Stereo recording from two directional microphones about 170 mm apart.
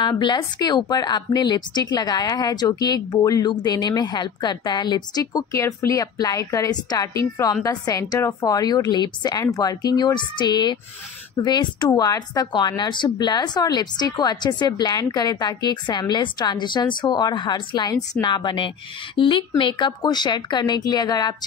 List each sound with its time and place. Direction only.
0.0 s speech: 25° left (ahead or behind)